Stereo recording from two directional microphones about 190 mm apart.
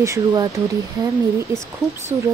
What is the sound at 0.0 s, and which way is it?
Speech, 15° right (ahead or behind).